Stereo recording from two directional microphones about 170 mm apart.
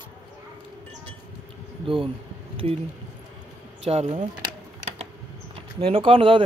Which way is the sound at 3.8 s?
40° right (ahead or behind).